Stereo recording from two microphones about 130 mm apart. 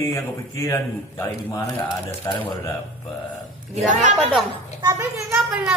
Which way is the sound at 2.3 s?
25° left (ahead or behind).